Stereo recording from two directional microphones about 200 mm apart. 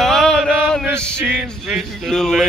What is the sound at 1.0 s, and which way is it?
Music, centre (ahead or behind).